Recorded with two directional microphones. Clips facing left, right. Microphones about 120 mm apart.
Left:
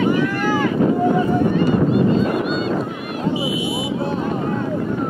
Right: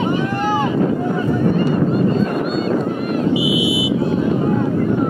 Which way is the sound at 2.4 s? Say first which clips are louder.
Right 3 dB; 45° right (ahead or behind).